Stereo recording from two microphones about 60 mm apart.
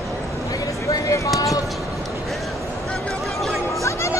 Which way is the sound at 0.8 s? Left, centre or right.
Left.